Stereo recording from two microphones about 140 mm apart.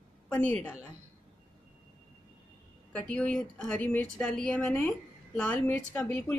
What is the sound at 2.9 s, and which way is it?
A woman's voice, 5° left (ahead or behind).